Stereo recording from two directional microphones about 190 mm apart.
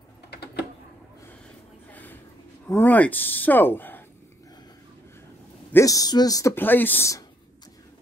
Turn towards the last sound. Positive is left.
turn(degrees=10)  # may be behind; listen again after turning